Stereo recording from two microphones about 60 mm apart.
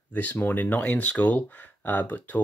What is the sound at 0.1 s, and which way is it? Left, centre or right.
Speech, left.